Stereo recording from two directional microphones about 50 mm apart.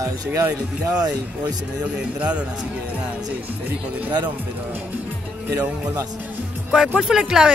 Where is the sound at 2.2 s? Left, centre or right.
Right.